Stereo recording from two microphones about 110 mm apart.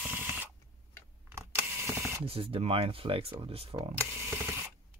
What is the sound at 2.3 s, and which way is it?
Speech, 60° right (ahead or behind).